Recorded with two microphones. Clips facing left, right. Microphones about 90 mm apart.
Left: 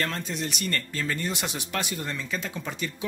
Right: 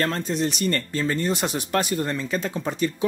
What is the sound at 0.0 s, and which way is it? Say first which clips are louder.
Speech: right 6 dB; 35° right (ahead or behind).